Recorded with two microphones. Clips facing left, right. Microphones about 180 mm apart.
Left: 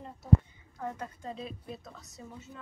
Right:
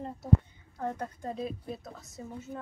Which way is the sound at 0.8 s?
50° right (ahead or behind).